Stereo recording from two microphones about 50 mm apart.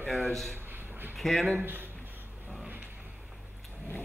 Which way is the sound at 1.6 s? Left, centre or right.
Right.